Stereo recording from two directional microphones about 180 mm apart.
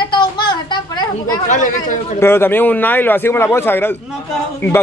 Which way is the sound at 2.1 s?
15° left (ahead or behind).